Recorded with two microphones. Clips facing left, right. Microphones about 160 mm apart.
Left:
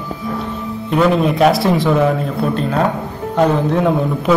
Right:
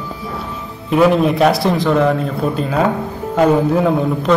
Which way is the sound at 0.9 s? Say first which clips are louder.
Right 2 dB; centre (ahead or behind).